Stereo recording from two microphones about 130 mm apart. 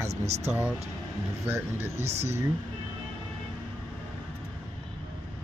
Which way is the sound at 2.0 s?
55° right (ahead or behind).